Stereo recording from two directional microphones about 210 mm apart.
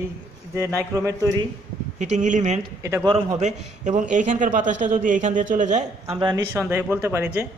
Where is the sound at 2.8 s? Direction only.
15° right (ahead or behind).